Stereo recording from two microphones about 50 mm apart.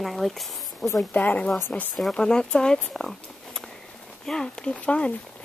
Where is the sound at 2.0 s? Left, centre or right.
Centre.